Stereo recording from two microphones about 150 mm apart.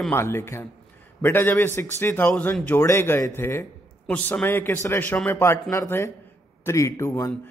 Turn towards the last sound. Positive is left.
turn(degrees=20)  # may be behind; listen again after turning